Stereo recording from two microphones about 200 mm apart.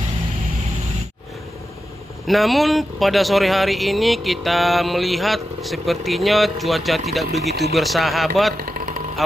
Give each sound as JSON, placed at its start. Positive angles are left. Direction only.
{"t": 2.2, "sound": "speech", "side_deg": 0}
{"t": 8.6, "sound": "vehicle", "side_deg": -45}